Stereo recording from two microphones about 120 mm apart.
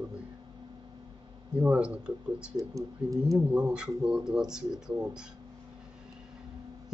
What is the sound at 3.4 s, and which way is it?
Speech, 10° right (ahead or behind).